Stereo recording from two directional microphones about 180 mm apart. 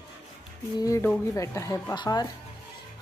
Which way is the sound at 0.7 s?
15° left (ahead or behind).